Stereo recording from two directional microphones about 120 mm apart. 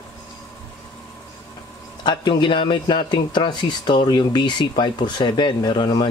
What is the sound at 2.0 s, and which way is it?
Speech, 40° left (ahead or behind).